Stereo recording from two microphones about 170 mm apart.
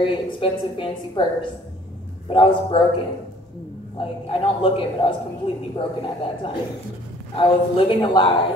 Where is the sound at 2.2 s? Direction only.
30° left (ahead or behind).